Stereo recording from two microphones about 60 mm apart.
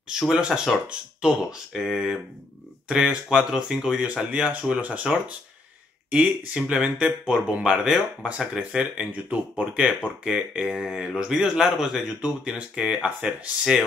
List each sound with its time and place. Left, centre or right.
0.1 s speech: centre
4.3 s speech: centre